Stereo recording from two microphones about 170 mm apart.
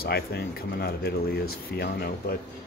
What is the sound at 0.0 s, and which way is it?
Speech, 65° left (ahead or behind).